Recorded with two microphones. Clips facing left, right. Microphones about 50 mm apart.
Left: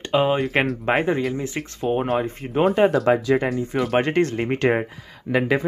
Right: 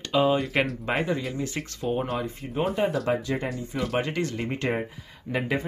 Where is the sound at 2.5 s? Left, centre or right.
Left.